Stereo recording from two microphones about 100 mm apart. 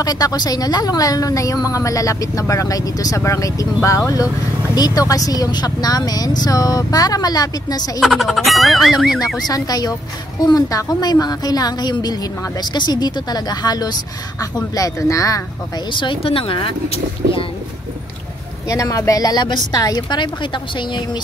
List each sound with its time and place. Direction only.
0.0 s speech: 40° left (ahead or behind)
8.0 s speech: centre (ahead or behind)
9.5 s speech: 40° left (ahead or behind)
15.9 s speech: 55° left (ahead or behind)
18.7 s speech: 35° left (ahead or behind); by 21.2 s 50° left (ahead or behind)